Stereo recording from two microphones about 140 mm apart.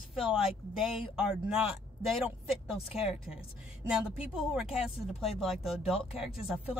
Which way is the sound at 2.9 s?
5° right (ahead or behind).